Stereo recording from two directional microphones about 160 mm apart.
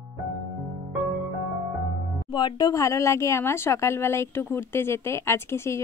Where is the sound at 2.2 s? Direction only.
30° left (ahead or behind).